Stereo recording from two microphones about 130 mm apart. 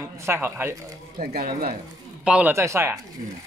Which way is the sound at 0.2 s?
20° right (ahead or behind).